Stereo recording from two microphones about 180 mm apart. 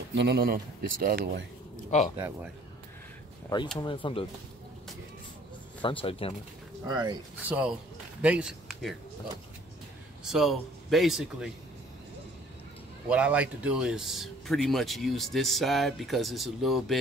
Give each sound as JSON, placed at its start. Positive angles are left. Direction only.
{"t": 0.1, "sound": "speech", "side_deg": -70}
{"t": 1.9, "sound": "speech", "side_deg": 40}
{"t": 3.8, "sound": "speech", "side_deg": 30}
{"t": 5.8, "sound": "speech", "side_deg": 30}
{"t": 6.9, "sound": "speech", "side_deg": -25}
{"t": 7.4, "sound": "speech", "side_deg": -10}
{"t": 10.2, "sound": "speech", "side_deg": 0}
{"t": 13.1, "sound": "speech", "side_deg": -5}